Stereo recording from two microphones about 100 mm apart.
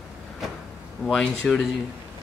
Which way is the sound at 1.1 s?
5° left (ahead or behind).